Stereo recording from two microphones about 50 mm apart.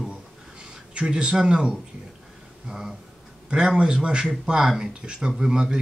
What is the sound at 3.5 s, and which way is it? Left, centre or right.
Speech, right.